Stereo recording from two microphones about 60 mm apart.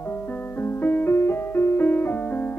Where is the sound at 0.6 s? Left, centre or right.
Left.